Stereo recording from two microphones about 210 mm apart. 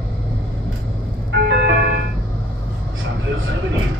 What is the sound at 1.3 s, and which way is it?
Ice cream truck, 60° right (ahead or behind).